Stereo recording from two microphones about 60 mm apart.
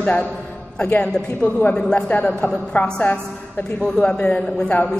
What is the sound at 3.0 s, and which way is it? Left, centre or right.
A woman's voice, left.